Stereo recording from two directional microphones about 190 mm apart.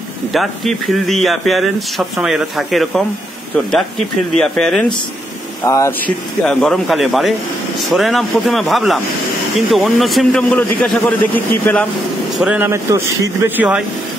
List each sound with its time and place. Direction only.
0.3 s speech: centre (ahead or behind)
4.4 s speech: 5° left (ahead or behind)
5.6 s speech: 15° left (ahead or behind)
6.4 s speech: 5° left (ahead or behind)
12.4 s speech: 5° right (ahead or behind)